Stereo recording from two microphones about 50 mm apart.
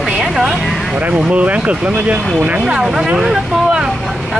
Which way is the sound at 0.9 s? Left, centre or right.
Right.